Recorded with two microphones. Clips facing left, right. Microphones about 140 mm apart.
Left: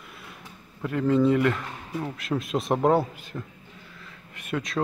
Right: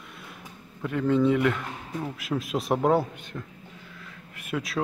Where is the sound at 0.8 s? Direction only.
Centre (ahead or behind).